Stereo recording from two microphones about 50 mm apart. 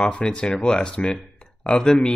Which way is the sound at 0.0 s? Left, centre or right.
Centre.